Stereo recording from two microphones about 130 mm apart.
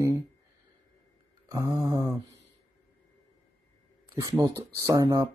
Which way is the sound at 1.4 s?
25° right (ahead or behind).